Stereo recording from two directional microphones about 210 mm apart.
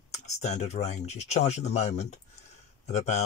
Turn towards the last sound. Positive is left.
turn(degrees=35)  # may be behind; listen again after turning